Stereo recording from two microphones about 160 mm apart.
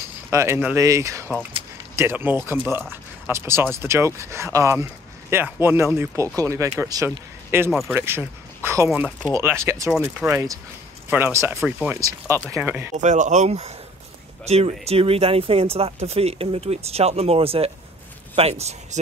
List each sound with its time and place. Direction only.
0.3 s speech: 15° right (ahead or behind)
12.9 s speech: 50° right (ahead or behind)